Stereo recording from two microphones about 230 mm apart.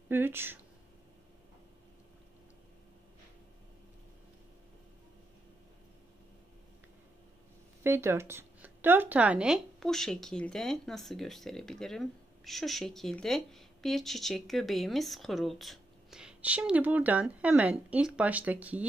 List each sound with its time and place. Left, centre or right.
0.1 s speech: centre
7.8 s speech: centre